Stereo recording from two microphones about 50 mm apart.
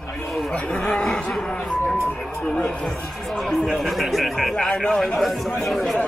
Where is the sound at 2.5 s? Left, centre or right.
Centre.